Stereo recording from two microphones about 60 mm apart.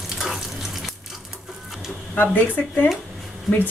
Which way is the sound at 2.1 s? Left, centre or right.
Left.